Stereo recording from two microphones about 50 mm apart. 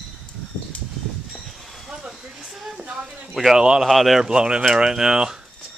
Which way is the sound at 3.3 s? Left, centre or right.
Centre.